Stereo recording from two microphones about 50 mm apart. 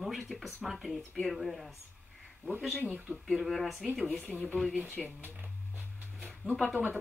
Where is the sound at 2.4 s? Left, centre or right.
Right.